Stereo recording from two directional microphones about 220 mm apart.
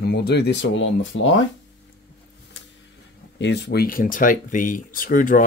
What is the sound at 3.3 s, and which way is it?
Speech, 50° left (ahead or behind).